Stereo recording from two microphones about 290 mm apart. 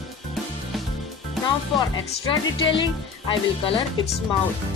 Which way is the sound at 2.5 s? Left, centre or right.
Centre.